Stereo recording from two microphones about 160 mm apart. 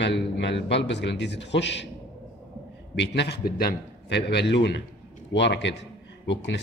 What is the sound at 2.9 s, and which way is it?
A man's voice, 90° left.